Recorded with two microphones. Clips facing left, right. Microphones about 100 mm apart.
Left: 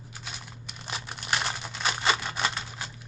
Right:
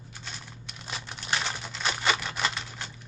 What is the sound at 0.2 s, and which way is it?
Crumpling, 5° left (ahead or behind).